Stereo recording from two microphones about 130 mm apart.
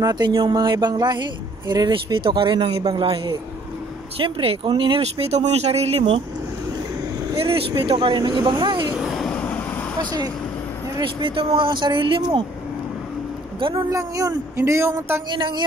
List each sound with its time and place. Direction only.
0.0 s a man's voice: 30° right (ahead or behind); by 6.2 s 50° right (ahead or behind)
7.3 s a man's voice: 45° right (ahead or behind)
8.9 s vehicle: centre (ahead or behind)
9.4 s vehicle: 15° left (ahead or behind)
9.9 s a man's voice: 30° right (ahead or behind)
11.0 s a man's voice: 40° right (ahead or behind)
13.7 s speech: 25° right (ahead or behind)
15.2 s a man's voice: 35° right (ahead or behind)